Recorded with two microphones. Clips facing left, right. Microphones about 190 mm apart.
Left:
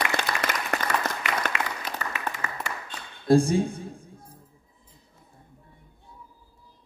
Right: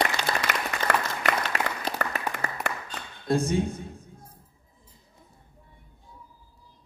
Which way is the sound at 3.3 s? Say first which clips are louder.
Left 5 dB; 30° left (ahead or behind).